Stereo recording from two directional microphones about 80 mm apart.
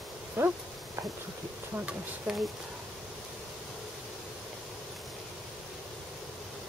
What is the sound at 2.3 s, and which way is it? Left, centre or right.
Speech, centre.